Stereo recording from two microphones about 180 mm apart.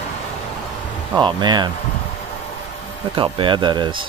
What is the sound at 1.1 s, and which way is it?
Speech, 25° right (ahead or behind).